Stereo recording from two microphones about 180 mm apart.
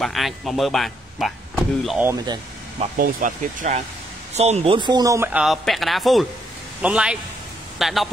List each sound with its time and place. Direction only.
0.0 s speech: centre (ahead or behind)
2.1 s speech: 25° right (ahead or behind)
3.0 s a man's voice: 50° right (ahead or behind); by 8.1 s centre (ahead or behind)